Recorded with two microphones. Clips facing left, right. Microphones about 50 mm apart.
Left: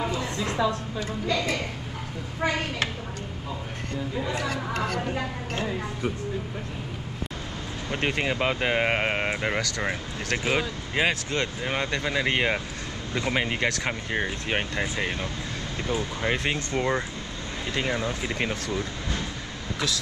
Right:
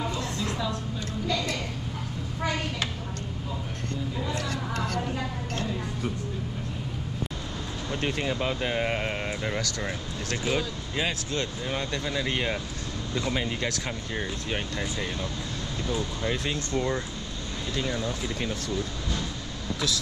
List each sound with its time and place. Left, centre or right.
1.2 s a woman's voice: centre
4.2 s speech: centre
5.0 s a woman's voice: left
7.9 s speech: left
18.7 s speech: left